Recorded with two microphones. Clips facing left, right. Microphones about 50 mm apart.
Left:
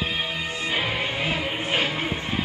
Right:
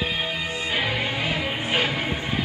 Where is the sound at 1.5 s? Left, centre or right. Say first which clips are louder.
Even; centre.